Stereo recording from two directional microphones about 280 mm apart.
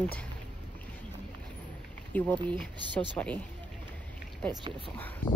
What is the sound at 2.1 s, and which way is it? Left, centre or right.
A woman's voice, centre.